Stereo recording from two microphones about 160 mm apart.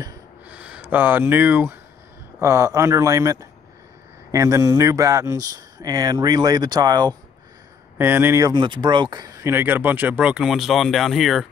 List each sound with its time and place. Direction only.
0.5 s speech: 5° right (ahead or behind); by 7.2 s 25° right (ahead or behind)
8.0 s speech: 15° right (ahead or behind)
9.5 s speech: 10° right (ahead or behind)